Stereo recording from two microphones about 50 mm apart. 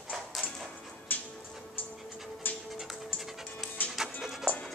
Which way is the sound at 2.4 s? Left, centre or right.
Left.